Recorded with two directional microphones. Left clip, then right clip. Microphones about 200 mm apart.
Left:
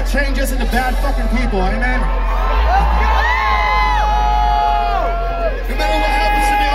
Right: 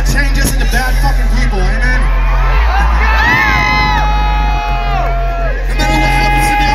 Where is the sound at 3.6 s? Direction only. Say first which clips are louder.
Right 3 dB; 55° left (ahead or behind).